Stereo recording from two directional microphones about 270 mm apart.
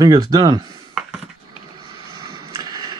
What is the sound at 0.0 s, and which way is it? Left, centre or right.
Speech, centre.